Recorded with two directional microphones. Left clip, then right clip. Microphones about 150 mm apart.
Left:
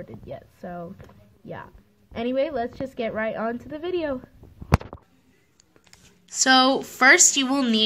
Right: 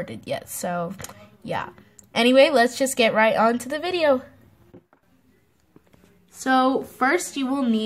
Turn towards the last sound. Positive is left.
turn(degrees=0)  # may be behind; listen again after turning